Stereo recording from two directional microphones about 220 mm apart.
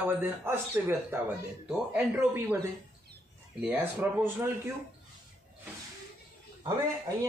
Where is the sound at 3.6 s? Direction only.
10° right (ahead or behind).